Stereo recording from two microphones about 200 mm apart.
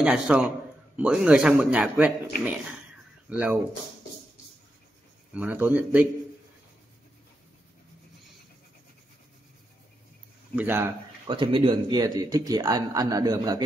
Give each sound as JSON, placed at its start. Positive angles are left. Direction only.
{"t": 0.0, "sound": "speech", "side_deg": -5}
{"t": 3.3, "sound": "speech", "side_deg": -5}
{"t": 5.3, "sound": "speech", "side_deg": -5}
{"t": 10.5, "sound": "speech", "side_deg": -10}
{"t": 11.2, "sound": "speech", "side_deg": -25}